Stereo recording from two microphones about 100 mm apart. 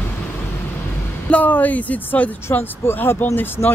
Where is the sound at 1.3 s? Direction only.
15° left (ahead or behind).